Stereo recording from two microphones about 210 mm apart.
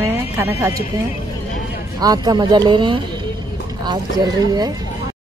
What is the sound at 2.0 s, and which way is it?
Speech, 20° right (ahead or behind).